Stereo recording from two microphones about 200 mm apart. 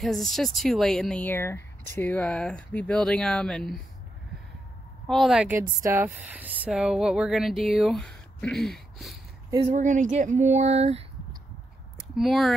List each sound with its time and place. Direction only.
0.0 s a woman's voice: centre (ahead or behind)
5.0 s a woman's voice: centre (ahead or behind)
9.7 s speech: 40° right (ahead or behind)
12.0 s speech: centre (ahead or behind)